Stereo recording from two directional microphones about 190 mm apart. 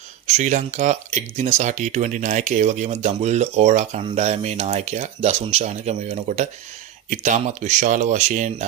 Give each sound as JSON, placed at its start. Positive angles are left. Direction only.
{"t": 0.3, "sound": "speech", "side_deg": -40}